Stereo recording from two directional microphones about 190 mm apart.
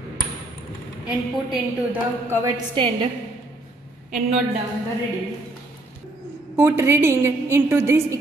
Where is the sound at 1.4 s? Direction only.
10° right (ahead or behind).